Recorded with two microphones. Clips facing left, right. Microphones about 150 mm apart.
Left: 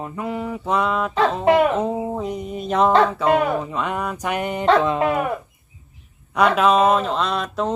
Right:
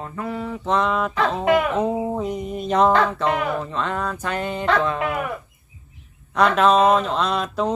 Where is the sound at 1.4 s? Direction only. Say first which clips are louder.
Left 3 dB; 30° left (ahead or behind).